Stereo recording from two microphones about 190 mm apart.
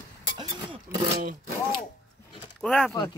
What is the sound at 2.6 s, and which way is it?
Speech, 5° left (ahead or behind).